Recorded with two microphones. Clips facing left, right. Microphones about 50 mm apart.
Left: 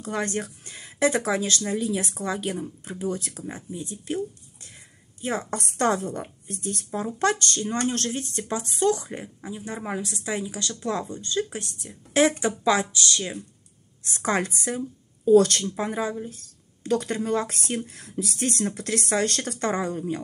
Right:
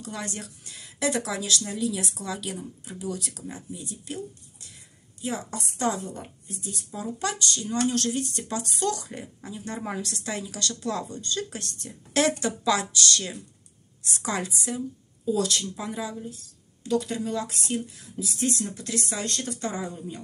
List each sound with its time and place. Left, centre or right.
0.0 s speech: left
5.2 s speech: left
5.6 s speech: left; by 13.4 s centre
14.0 s speech: left